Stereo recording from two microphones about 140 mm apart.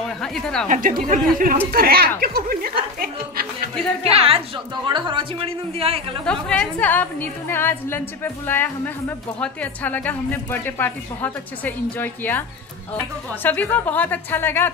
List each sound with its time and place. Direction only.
0.2 s a woman's voice: 5° left (ahead or behind)
0.7 s speech: 80° right
1.7 s speech: 90° right
4.0 s a woman's voice: 45° right (ahead or behind)
6.2 s a woman's voice: 10° left (ahead or behind)